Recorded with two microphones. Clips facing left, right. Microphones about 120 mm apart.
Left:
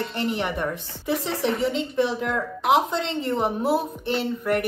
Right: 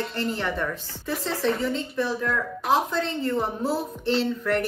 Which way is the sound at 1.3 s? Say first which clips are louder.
Right 1 dB; 65° left (ahead or behind).